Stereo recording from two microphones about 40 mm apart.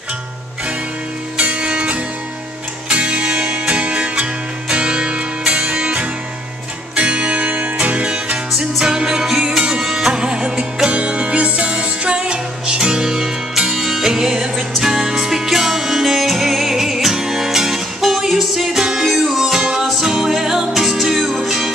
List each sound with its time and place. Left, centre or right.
1.4 s music: right; by 9.6 s centre
9.6 s music: right
10.9 s music: right; by 21.7 s centre